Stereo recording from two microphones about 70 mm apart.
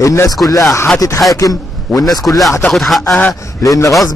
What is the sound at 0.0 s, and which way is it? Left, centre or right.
A man's voice, left.